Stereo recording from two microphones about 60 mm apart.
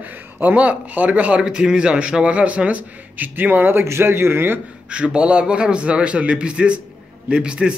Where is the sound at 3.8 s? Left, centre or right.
Right.